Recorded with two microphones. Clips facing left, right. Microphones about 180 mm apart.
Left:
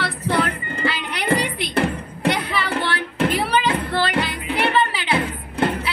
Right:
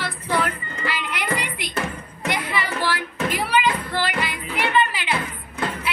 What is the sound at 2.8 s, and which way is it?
Music, 30° left (ahead or behind).